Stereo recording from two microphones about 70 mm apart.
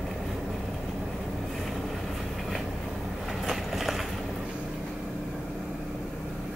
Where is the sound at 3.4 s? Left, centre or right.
Centre.